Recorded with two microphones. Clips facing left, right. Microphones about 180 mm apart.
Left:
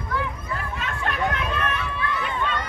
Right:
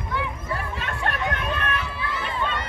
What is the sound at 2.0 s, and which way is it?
Run, 30° right (ahead or behind).